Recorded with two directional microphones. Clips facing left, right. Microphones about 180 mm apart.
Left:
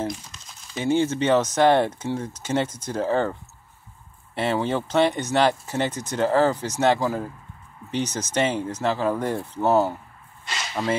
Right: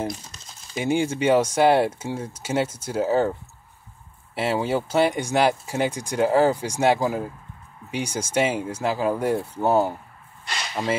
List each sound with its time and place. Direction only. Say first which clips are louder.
0.7 s speech: left 1 dB; 15° right (ahead or behind)
4.4 s speech: even; 5° right (ahead or behind)